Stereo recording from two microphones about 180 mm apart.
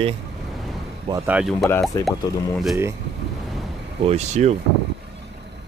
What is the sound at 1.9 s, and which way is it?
Speech, 15° left (ahead or behind).